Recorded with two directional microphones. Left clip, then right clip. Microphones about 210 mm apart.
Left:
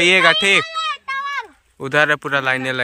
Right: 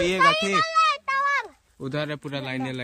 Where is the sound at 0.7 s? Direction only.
15° right (ahead or behind).